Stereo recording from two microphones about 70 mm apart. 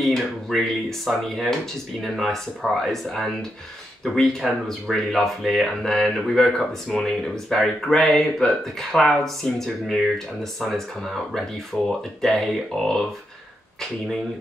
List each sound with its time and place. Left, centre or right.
0.0 s speech: centre